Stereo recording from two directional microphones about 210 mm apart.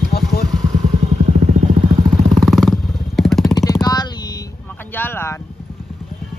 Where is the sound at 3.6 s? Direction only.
15° left (ahead or behind).